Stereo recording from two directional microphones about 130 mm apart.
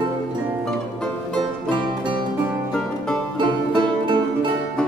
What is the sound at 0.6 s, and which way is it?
Music, 5° left (ahead or behind).